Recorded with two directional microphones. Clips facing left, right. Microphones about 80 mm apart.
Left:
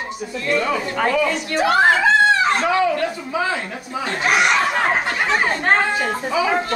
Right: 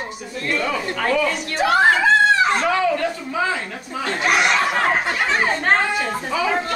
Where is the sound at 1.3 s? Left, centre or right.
Centre.